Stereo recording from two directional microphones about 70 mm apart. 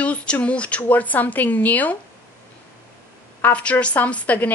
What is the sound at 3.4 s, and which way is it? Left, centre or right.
Speech, left.